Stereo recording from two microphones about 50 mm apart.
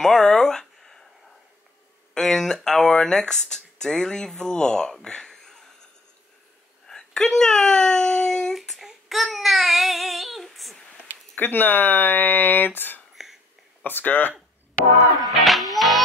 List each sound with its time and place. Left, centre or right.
0.0 s a sound: centre
2.1 s speech: centre
5.0 s a sound: centre
6.9 s a sound: centre
8.5 s child singing: centre
11.3 s speech: left
13.1 s whispering: centre
13.8 s speech: left
15.0 s music: centre